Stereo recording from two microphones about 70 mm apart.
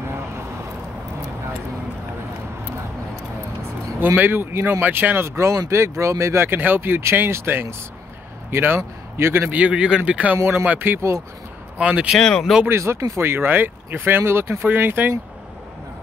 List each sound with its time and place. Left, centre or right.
4.0 s speech: right
9.5 s speech: centre; by 11.1 s right
11.8 s speech: centre
12.2 s speech: centre
12.6 s speech: right
13.2 s speech: right